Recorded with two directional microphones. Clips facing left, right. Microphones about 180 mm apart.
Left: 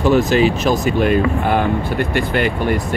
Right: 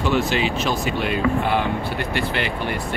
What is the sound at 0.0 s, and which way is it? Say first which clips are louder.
Speech: left 7 dB; 45° left (ahead or behind).